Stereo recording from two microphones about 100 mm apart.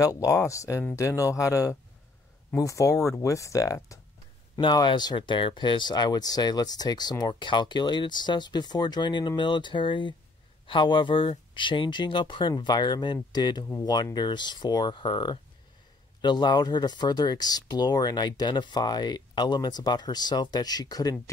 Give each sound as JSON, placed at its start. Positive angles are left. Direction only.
{"t": 0.0, "sound": "speech", "side_deg": 35}
{"t": 4.7, "sound": "speech", "side_deg": 45}